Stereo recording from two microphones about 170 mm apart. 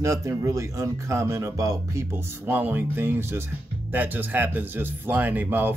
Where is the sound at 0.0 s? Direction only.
20° right (ahead or behind).